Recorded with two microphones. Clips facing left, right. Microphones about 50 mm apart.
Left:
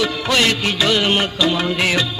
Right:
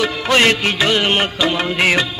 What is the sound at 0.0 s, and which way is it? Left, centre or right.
Music, right.